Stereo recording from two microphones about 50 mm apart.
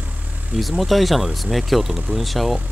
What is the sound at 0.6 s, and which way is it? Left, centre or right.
Speech, centre.